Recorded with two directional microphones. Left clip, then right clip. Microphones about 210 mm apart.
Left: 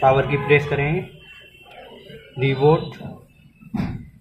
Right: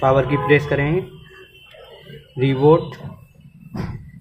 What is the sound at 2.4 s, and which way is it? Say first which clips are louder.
Speech: right 3 dB; 15° right (ahead or behind).